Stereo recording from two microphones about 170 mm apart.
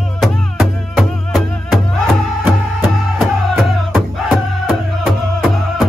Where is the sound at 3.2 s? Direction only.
Centre (ahead or behind).